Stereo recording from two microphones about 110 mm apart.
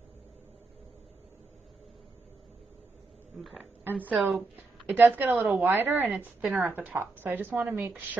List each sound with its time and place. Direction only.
3.8 s a woman's voice: 15° right (ahead or behind)